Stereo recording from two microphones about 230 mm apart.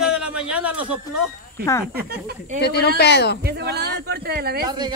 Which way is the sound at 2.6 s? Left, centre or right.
Left.